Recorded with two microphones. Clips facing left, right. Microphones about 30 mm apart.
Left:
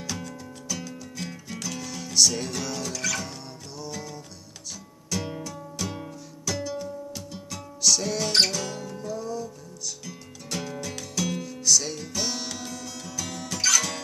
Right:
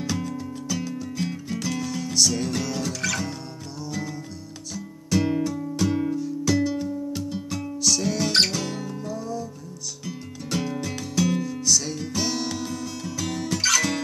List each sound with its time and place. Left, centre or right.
0.0 s music: centre
2.9 s music: right
3.8 s music: centre
4.7 s music: right; by 8.3 s centre
8.3 s music: centre